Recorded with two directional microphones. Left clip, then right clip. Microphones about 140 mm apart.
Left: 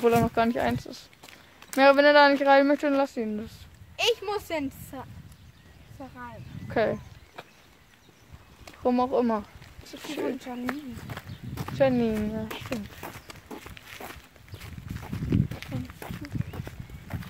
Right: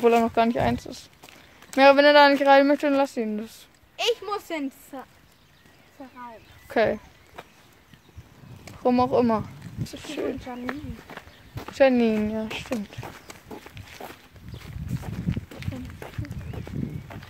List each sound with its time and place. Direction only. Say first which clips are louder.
0.0 s speech: right 3 dB; 15° right (ahead or behind)
3.9 s speech: even; 50° left (ahead or behind)
6.7 s speech: right 3 dB; 15° right (ahead or behind)
8.6 s speech: right 3 dB; 20° right (ahead or behind)
10.4 s speech: right 1 dB; 60° left (ahead or behind)
11.7 s a woman's voice: right 5 dB; 35° right (ahead or behind)
12.7 s speech: right 3 dB; 5° right (ahead or behind)
13.5 s a sound: left 1 dB; 35° left (ahead or behind)
15.3 s a sound: left 5 dB; 40° left (ahead or behind)